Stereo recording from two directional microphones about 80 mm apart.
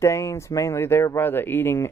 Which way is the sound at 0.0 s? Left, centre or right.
Left.